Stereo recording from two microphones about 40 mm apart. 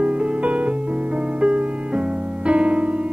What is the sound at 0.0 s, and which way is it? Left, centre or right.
Music, right.